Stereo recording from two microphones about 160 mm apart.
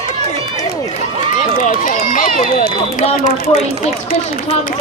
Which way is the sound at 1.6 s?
60° left (ahead or behind).